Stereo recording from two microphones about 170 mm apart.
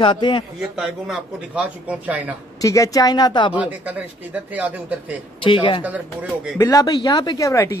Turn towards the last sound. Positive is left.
turn(degrees=20)  # may be behind; listen again after turning